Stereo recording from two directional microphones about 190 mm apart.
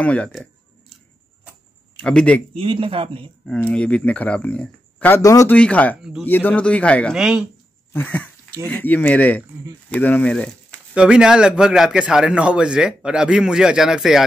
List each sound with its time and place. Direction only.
0.0 s a sound: 5° left (ahead or behind)
2.0 s a man's voice: 5° left (ahead or behind)
2.5 s speech: 30° right (ahead or behind)
3.4 s a man's voice: 5° left (ahead or behind)
7.9 s speech: 10° left (ahead or behind)
11.0 s a man's voice: 5° right (ahead or behind)